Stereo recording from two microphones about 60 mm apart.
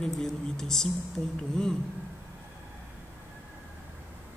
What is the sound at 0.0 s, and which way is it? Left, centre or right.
Speech, centre.